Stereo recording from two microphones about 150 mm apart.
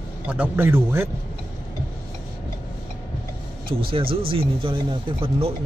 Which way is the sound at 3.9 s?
35° right (ahead or behind).